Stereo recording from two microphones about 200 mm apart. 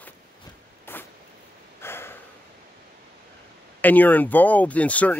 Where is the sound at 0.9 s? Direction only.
10° left (ahead or behind).